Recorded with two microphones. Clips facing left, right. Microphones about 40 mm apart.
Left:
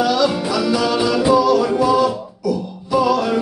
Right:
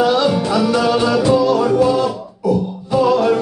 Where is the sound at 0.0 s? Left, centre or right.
Right.